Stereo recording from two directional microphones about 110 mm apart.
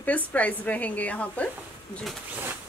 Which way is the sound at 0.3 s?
15° left (ahead or behind).